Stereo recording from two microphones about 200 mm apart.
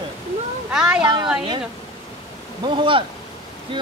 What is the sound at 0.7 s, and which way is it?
Speech, 5° right (ahead or behind).